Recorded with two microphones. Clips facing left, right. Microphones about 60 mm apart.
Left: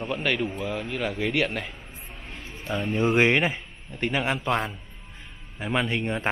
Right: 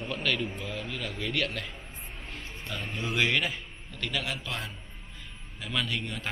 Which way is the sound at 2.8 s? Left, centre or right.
Left.